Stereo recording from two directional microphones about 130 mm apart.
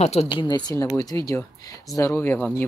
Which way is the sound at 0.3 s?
35° left (ahead or behind).